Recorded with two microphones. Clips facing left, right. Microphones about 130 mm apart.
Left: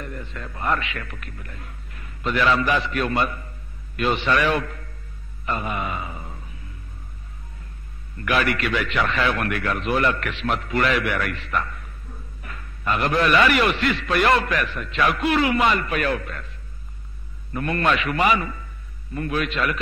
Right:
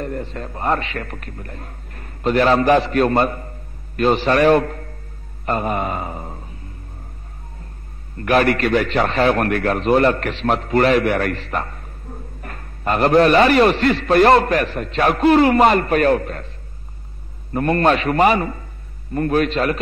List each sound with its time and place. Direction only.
0.0 s a man's voice: 40° right (ahead or behind)
8.2 s a man's voice: 40° right (ahead or behind)